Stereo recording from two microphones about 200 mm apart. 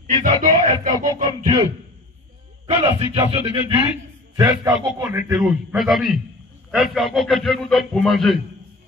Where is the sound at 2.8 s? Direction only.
30° right (ahead or behind).